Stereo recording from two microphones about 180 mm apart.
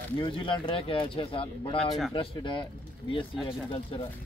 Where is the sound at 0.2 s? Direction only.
25° left (ahead or behind).